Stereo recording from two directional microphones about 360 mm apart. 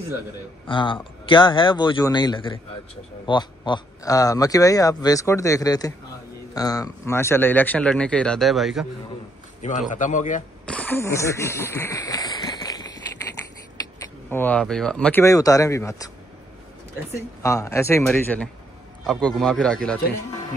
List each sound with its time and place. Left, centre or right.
0.7 s a man's voice: centre
9.6 s speech: centre
10.6 s speech: centre
14.3 s speech: centre
17.4 s a man's voice: centre